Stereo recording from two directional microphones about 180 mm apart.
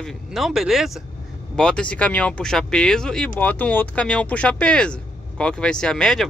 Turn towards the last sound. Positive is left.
turn(degrees=5)  # may be behind; listen again after turning